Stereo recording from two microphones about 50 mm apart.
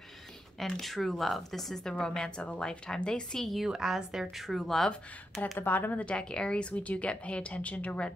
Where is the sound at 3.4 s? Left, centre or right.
Centre.